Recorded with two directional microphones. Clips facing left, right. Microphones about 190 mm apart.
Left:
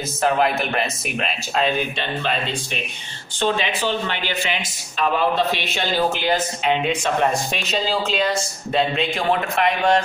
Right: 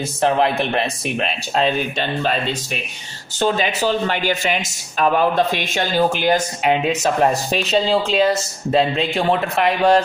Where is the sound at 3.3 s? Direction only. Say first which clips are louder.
Right 3 dB; 40° right (ahead or behind).